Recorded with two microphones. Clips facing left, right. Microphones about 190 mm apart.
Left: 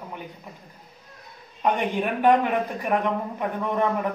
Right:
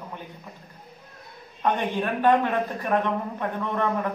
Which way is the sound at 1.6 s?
15° left (ahead or behind).